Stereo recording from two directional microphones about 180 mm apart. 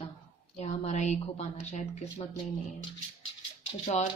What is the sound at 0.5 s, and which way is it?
Speech, 40° left (ahead or behind).